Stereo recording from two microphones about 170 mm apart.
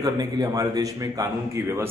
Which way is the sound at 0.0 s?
20° right (ahead or behind).